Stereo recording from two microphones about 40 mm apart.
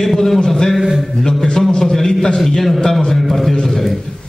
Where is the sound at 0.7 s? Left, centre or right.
Centre.